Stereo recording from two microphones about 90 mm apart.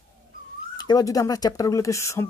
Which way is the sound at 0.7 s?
50° left (ahead or behind).